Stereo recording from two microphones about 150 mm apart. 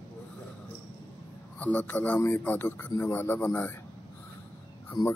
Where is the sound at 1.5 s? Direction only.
10° left (ahead or behind).